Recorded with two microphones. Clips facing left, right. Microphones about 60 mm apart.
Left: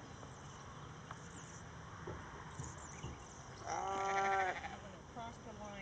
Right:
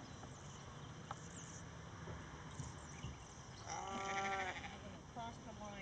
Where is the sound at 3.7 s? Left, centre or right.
Left.